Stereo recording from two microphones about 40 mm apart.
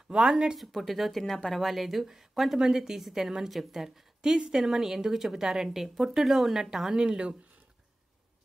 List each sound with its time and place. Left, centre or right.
0.1 s speech: right
0.6 s a woman's voice: centre; by 7.3 s right